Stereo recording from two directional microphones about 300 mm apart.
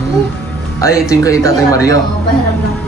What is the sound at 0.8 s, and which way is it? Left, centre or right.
Speech, centre.